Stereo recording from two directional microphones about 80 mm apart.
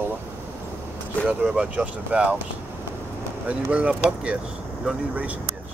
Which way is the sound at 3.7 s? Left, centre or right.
Centre.